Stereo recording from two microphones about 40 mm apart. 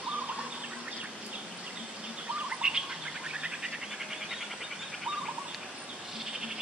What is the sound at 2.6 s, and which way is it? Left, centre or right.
Bird, right.